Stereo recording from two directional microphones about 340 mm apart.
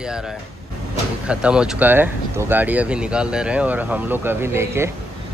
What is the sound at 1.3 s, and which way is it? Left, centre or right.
Speech, centre.